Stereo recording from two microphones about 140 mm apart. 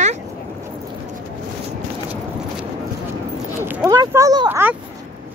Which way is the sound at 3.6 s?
20° right (ahead or behind).